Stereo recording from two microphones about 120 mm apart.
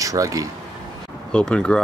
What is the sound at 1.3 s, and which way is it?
Speech, 10° left (ahead or behind).